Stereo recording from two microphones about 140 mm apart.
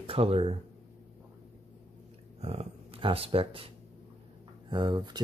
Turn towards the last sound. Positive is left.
turn(degrees=-30)  # may be behind; listen again after turning